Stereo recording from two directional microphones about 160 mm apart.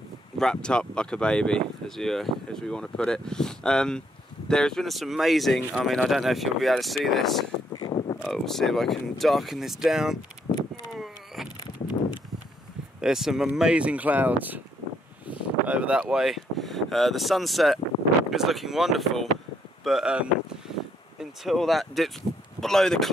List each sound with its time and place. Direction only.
0.4 s speech: 5° left (ahead or behind)
7.7 s a sound: 30° left (ahead or behind)
8.3 s speech: centre (ahead or behind)
10.9 s vehicle: centre (ahead or behind)
13.0 s speech: 5° right (ahead or behind)
15.2 s a sound: 10° right (ahead or behind)
18.3 s speech: centre (ahead or behind)